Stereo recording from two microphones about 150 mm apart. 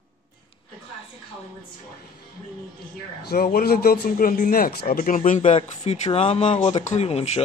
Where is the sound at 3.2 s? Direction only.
90° left; by 7.4 s 45° left (ahead or behind).